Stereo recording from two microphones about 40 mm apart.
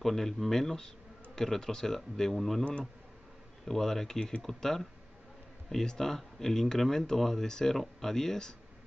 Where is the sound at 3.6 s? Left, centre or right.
Centre.